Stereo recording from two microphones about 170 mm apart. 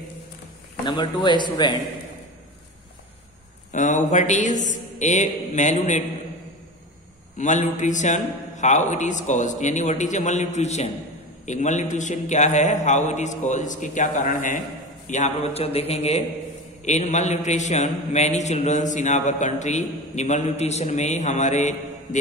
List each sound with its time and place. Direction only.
0.8 s a man's voice: 25° left (ahead or behind)
3.7 s a man's voice: 45° left (ahead or behind)
7.3 s a man's voice: 45° left (ahead or behind)